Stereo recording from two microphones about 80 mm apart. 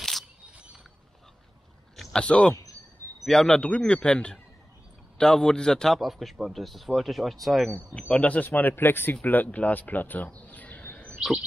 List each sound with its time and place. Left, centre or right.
2.0 s a man's voice: centre
8.1 s speech: centre